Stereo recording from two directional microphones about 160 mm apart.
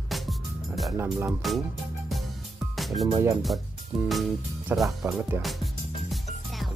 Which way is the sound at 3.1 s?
20° right (ahead or behind).